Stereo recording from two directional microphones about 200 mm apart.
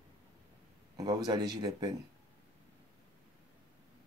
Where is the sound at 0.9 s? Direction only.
20° right (ahead or behind).